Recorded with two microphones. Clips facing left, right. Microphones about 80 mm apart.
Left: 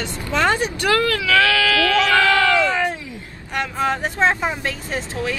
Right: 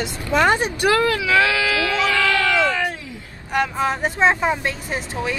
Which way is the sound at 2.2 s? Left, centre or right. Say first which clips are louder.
Left 2 dB; left.